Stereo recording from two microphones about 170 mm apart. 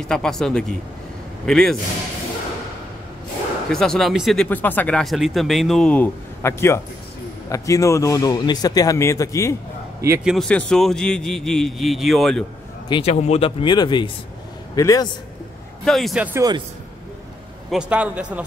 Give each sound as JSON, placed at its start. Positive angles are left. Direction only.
{"t": 0.0, "sound": "speech", "side_deg": 5}
{"t": 3.7, "sound": "a man's voice", "side_deg": 5}
{"t": 10.2, "sound": "speech", "side_deg": 0}
{"t": 12.8, "sound": "a man's voice", "side_deg": 30}
{"t": 15.8, "sound": "speech", "side_deg": 0}
{"t": 16.3, "sound": "a man's voice", "side_deg": -25}
{"t": 17.6, "sound": "a man's voice", "side_deg": -5}